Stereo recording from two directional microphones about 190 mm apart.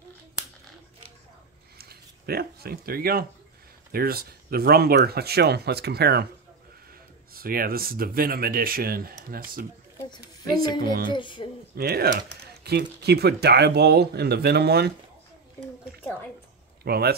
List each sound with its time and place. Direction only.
1.8 s speech: 55° right (ahead or behind)
7.3 s speech: 50° right (ahead or behind)
11.1 s speech: 25° left (ahead or behind)
11.7 s speech: 55° right (ahead or behind)
16.8 s speech: 55° right (ahead or behind)